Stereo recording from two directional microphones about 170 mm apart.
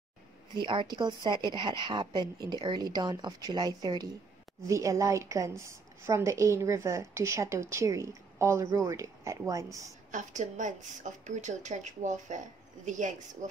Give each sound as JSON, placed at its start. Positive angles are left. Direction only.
{"t": 0.6, "sound": "a woman's voice", "side_deg": -25}
{"t": 10.1, "sound": "a woman's voice", "side_deg": -45}